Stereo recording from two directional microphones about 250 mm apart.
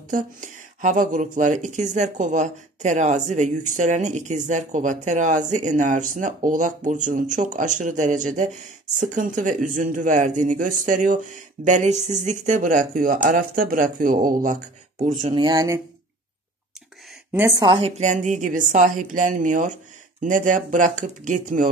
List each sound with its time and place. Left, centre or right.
0.1 s speech: right; by 15.8 s centre
17.3 s speech: centre; by 21.6 s right